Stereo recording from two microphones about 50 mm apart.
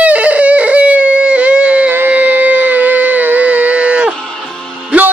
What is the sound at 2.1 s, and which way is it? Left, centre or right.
Music, right.